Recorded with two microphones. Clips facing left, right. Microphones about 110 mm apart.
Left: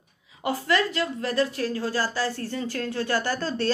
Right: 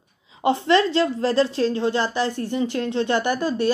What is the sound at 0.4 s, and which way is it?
A woman's voice, 25° right (ahead or behind).